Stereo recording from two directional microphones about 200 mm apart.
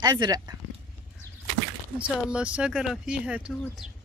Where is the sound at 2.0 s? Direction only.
5° right (ahead or behind).